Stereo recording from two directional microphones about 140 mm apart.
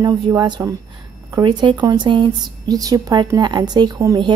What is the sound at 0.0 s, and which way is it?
A woman's voice, 30° right (ahead or behind).